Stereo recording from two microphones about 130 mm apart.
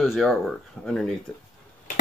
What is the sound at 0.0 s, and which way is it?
Speech, centre (ahead or behind).